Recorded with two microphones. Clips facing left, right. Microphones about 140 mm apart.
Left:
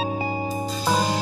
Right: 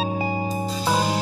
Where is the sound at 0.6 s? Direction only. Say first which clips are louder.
Even; 5° right (ahead or behind).